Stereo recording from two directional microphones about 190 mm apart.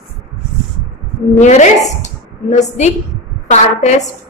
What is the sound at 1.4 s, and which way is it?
A woman's voice, 40° left (ahead or behind).